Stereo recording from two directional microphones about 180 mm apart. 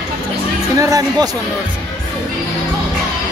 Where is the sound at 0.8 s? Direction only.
20° right (ahead or behind).